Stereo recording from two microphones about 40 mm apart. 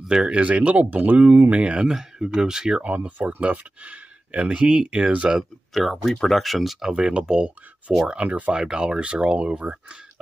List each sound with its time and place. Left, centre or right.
0.1 s speech: right
0.4 s speech: right
1.9 s speech: centre
2.8 s speech: right
5.7 s speech: centre
6.9 s speech: right